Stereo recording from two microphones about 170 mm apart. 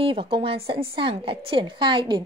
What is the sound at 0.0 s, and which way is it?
A woman's voice, 30° right (ahead or behind).